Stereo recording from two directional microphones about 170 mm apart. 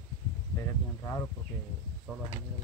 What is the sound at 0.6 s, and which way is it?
Speech, 15° left (ahead or behind).